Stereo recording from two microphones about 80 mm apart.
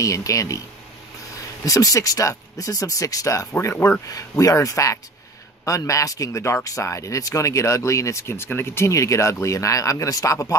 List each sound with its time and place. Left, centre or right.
0.0 s speech: left
1.6 s speech: left
3.6 s speech: left
4.0 s speech: left